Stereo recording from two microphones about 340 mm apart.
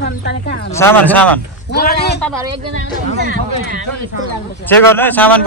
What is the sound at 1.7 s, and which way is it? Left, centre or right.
Speech, left.